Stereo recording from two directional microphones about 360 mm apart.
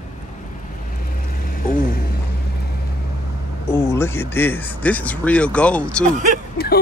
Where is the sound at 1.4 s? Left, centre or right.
Left.